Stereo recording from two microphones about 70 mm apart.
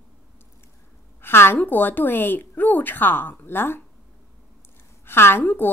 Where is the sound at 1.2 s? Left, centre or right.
Left.